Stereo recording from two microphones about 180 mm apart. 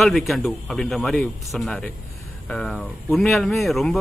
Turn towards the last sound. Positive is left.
turn(degrees=0)  # may be behind; listen again after turning